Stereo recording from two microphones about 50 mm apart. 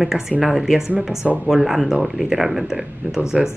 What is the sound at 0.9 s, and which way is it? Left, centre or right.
Speech, right.